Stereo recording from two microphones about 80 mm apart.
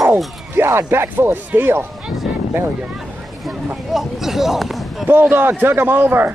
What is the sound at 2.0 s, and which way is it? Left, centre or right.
Speech, centre.